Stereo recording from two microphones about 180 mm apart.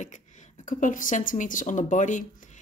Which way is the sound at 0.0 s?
40° left (ahead or behind).